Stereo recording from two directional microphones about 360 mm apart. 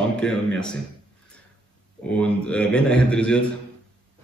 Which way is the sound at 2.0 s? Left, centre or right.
Centre.